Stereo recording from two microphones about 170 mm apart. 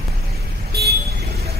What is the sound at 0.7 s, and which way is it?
Vehicle, 70° right (ahead or behind).